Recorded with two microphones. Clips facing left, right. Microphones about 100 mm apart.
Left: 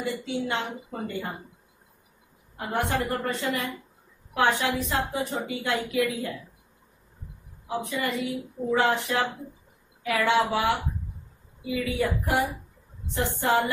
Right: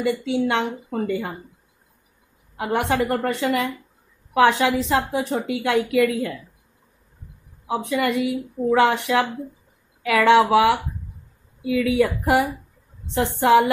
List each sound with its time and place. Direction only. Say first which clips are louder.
0.0 s a woman's voice: right 8 dB; 80° right
2.5 s a woman's voice: right 6 dB; 90° right
7.6 s a woman's voice: right 7 dB; 90° right